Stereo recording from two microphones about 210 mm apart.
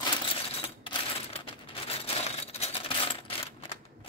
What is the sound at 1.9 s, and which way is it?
Typewriter, 30° left (ahead or behind).